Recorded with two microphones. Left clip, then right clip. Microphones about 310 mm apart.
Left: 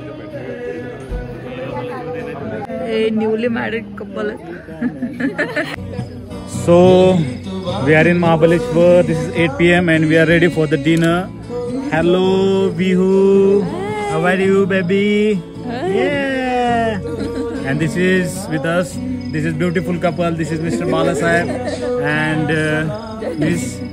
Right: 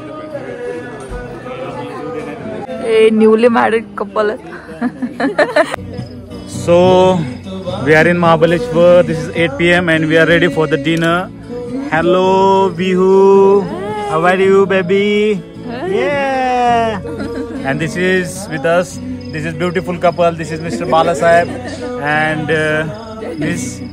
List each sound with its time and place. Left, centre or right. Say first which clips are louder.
2.9 s a man's voice: right 9 dB; centre
6.6 s a man's voice: right 1 dB; centre
13.7 s cat: right 1 dB; centre
14.1 s a man's voice: right 5 dB; centre
15.9 s a sound: right 3 dB; centre
17.2 s a sound: even; centre
17.6 s a man's voice: right 3 dB; centre
21.5 s speech: left 3 dB; left
22.0 s a man's voice: right 7 dB; centre